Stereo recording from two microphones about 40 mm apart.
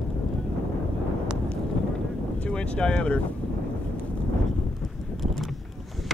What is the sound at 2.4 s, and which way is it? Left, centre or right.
Vehicle, left.